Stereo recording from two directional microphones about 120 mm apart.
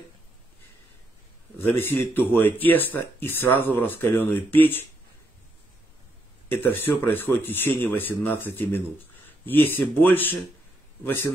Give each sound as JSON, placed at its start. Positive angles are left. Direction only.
{"t": 1.6, "sound": "speech", "side_deg": 20}
{"t": 6.5, "sound": "speech", "side_deg": 20}